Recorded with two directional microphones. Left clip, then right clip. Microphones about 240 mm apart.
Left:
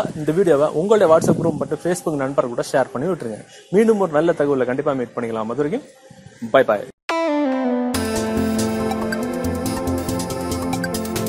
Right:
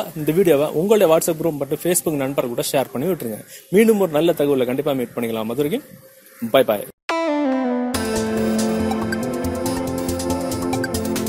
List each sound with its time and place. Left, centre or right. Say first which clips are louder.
0.3 s speech: even; right
7.1 s music: even; centre